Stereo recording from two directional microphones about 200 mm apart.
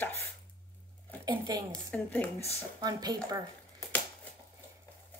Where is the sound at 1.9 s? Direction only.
10° left (ahead or behind).